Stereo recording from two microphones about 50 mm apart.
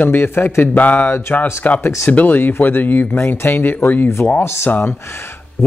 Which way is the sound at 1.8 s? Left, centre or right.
Left.